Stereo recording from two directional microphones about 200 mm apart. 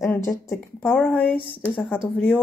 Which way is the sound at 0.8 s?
Centre (ahead or behind).